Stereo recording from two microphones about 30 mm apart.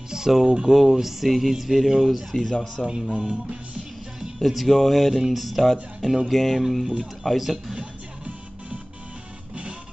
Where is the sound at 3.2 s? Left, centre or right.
Right.